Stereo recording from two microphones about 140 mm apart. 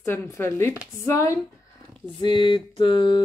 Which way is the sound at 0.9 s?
20° left (ahead or behind).